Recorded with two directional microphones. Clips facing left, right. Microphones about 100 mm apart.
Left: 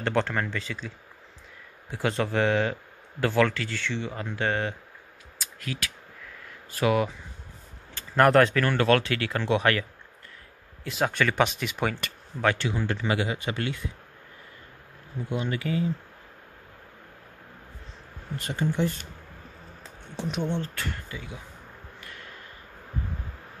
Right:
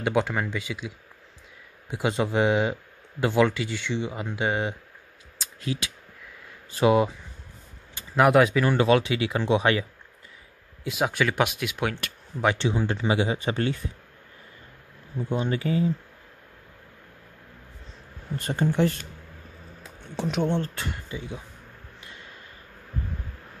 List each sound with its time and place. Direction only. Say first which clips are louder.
0.0 s speech: right 1 dB; 10° right (ahead or behind)
5.4 s a sound: right 4 dB; 25° right (ahead or behind)
6.7 s speech: right 4 dB; 25° right (ahead or behind)
7.9 s speech: even; 10° right (ahead or behind)
12.4 s speech: right 2 dB; 20° right (ahead or behind)
15.2 s speech: right 3 dB; 30° right (ahead or behind)
18.4 s speech: right 3 dB; 40° right (ahead or behind)
20.2 s speech: right 4 dB; 90° right
20.4 s speech: right 4 dB; 50° right (ahead or behind)
20.7 s speech: right 1 dB; 20° right (ahead or behind)
22.0 s a sound: left 1 dB; 20° right (ahead or behind)